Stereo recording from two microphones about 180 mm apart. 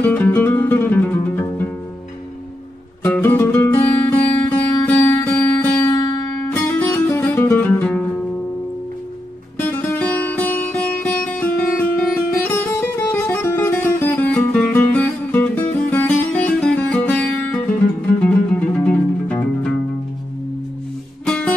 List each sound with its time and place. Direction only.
0.0 s music: 10° left (ahead or behind)
3.0 s music: 10° left (ahead or behind)
6.5 s music: 10° left (ahead or behind)
9.6 s music: 10° left (ahead or behind)
21.3 s music: 5° left (ahead or behind)